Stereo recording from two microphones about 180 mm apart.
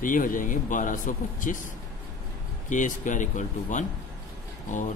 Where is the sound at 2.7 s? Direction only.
45° left (ahead or behind).